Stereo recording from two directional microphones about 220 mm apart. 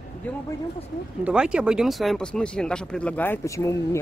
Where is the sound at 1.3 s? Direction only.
5° right (ahead or behind).